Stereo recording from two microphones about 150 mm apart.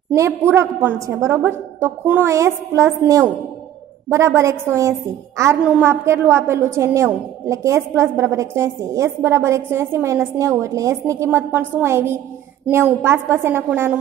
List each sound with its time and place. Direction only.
0.1 s a woman's voice: 20° right (ahead or behind)